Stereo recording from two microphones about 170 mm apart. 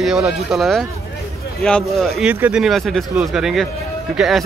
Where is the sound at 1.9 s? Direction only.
Centre (ahead or behind).